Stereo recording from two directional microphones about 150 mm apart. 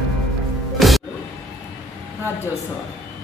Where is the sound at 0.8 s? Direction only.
Centre (ahead or behind).